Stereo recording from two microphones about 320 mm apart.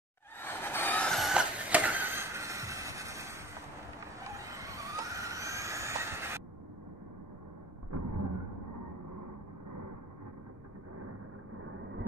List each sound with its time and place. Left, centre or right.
0.4 s vehicle: centre
4.6 s vehicle: centre
7.9 s a sound: right